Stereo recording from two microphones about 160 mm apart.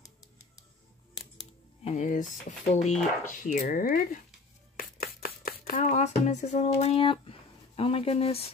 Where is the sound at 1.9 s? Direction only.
50° left (ahead or behind).